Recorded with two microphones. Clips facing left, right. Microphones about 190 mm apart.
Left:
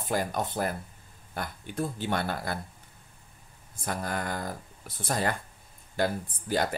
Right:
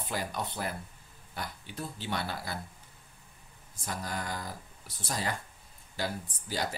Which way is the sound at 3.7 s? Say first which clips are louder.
Left 5 dB; 55° left (ahead or behind).